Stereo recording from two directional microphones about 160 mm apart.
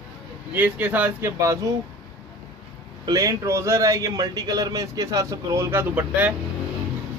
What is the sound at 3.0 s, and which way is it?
A man's voice, 25° right (ahead or behind).